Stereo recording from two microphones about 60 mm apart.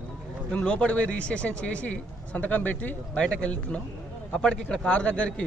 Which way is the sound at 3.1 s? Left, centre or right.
Centre.